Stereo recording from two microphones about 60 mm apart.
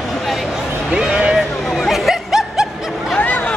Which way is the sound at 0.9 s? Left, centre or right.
Centre.